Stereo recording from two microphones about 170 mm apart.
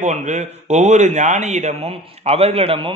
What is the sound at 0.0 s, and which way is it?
A man's voice, 45° right (ahead or behind).